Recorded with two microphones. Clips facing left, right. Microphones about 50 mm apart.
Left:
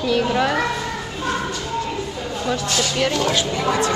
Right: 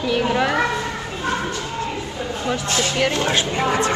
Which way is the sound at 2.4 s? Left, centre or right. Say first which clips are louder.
Even; right.